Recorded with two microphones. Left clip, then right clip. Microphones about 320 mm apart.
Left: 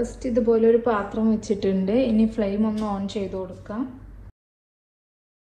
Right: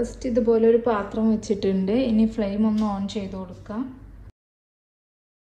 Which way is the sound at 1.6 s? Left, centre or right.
Right.